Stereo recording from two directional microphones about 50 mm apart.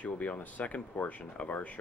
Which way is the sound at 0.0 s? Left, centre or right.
Left.